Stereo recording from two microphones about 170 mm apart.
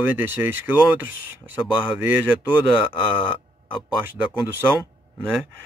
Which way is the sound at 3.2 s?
30° left (ahead or behind).